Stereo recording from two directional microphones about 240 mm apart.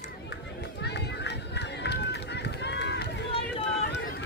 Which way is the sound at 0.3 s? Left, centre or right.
Left.